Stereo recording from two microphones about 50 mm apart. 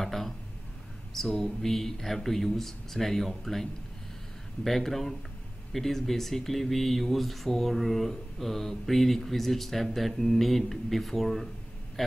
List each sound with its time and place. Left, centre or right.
0.0 s a sound: centre
1.1 s speech: centre
4.6 s speech: centre